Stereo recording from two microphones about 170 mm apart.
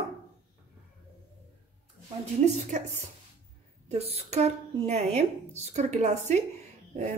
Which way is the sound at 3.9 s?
35° right (ahead or behind).